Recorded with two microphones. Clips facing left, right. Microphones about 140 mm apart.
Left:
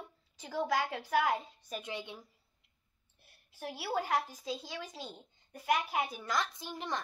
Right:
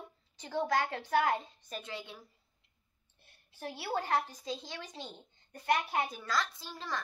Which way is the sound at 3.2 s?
5° left (ahead or behind).